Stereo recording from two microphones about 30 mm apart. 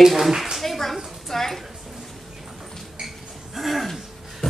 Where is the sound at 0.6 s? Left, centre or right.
Centre.